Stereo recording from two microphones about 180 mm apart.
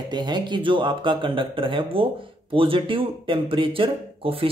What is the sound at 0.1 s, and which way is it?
Speech, 25° right (ahead or behind).